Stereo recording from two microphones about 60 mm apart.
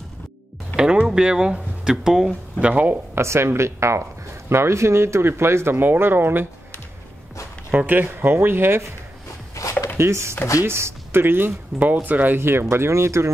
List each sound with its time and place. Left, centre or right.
1.0 s speech: centre
2.6 s speech: right
3.2 s speech: right
7.7 s speech: right
9.6 s chopping: left
9.9 s speech: right
12.4 s speech: right